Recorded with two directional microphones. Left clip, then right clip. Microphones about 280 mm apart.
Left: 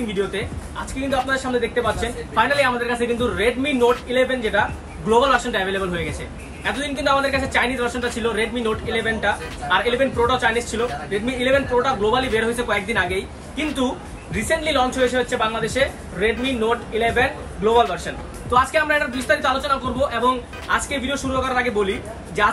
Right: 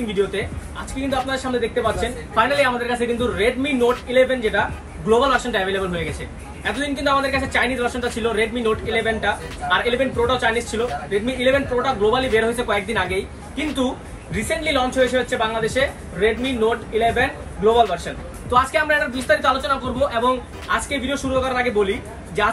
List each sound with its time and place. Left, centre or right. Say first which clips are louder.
0.0 s speech: right 2 dB; centre